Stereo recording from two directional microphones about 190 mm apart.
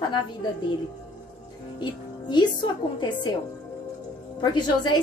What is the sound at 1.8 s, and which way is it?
A woman's voice, 25° left (ahead or behind).